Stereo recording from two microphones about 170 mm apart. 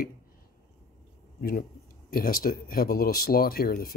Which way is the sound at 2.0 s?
60° left (ahead or behind).